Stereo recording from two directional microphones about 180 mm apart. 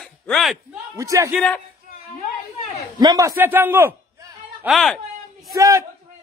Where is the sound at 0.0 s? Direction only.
Centre (ahead or behind).